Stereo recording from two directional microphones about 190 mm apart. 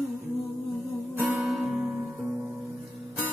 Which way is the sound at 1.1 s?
5° right (ahead or behind).